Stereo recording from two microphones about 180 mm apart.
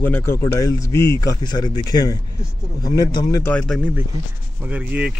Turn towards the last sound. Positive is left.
turn(degrees=-10)  # may be behind; listen again after turning